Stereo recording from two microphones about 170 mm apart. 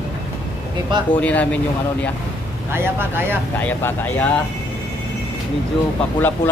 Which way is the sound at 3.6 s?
10° left (ahead or behind).